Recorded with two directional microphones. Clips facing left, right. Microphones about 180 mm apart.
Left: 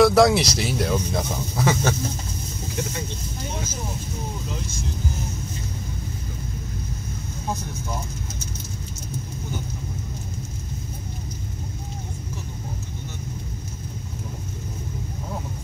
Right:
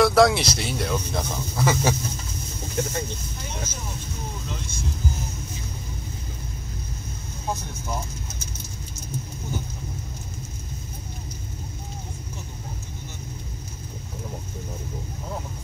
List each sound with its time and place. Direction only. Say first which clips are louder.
0.0 s speech: left 2 dB; centre (ahead or behind)
2.7 s speech: right 3 dB; 50° right (ahead or behind)
4.5 s speech: left 2 dB; centre (ahead or behind)
7.4 s speech: even; centre (ahead or behind)